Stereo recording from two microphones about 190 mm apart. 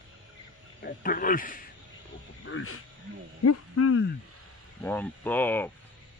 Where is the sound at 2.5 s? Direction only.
85° left.